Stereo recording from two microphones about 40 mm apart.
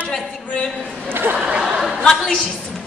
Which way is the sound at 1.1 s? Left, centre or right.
Right.